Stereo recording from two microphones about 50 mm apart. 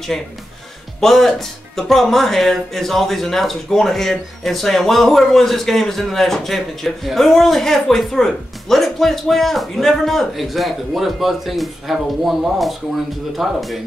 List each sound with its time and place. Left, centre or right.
1.0 s speech: centre